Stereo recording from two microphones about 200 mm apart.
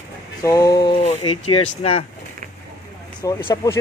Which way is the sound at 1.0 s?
35° left (ahead or behind).